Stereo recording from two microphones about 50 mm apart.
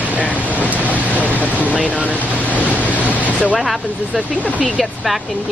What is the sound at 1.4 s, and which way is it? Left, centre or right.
Vehicle, left.